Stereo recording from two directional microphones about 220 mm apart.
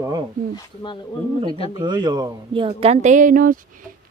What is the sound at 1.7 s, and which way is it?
Speech, 20° right (ahead or behind).